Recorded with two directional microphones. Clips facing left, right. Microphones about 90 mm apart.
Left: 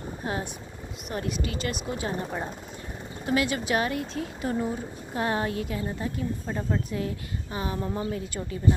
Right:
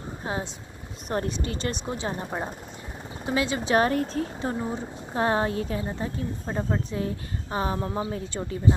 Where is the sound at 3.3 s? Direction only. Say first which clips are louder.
Right 1 dB; 25° right (ahead or behind).